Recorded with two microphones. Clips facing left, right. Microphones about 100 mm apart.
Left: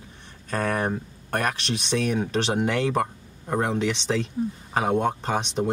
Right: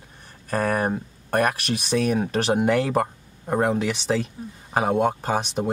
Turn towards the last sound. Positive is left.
turn(degrees=-5)  # may be behind; listen again after turning